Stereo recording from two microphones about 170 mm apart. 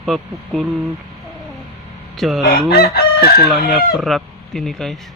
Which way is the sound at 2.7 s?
65° left (ahead or behind).